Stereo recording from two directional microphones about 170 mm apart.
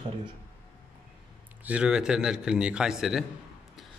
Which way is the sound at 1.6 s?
5° right (ahead or behind).